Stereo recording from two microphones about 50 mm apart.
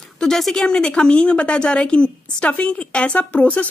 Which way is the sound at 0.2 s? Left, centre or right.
Centre.